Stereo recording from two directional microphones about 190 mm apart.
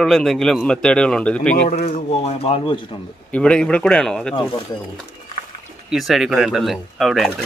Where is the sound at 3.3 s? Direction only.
5° left (ahead or behind).